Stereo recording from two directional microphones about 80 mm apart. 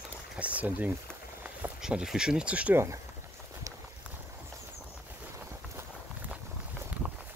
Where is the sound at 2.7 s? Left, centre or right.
Right.